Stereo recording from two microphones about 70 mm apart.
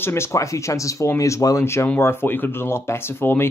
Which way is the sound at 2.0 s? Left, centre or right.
Left.